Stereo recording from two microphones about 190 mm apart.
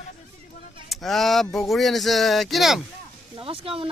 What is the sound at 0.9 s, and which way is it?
Speech, centre (ahead or behind).